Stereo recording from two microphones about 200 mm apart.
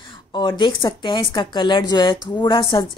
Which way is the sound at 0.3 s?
25° left (ahead or behind).